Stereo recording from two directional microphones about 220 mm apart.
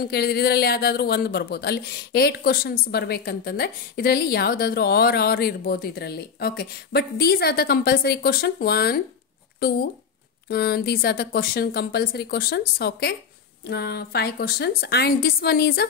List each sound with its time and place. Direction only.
0.0 s speech: 45° left (ahead or behind)